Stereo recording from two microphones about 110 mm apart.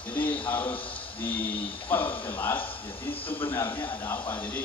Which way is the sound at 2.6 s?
55° left (ahead or behind).